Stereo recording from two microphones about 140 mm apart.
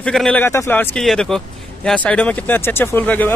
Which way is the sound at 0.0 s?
5° left (ahead or behind).